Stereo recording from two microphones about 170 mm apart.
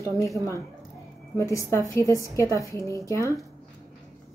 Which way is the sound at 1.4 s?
15° left (ahead or behind).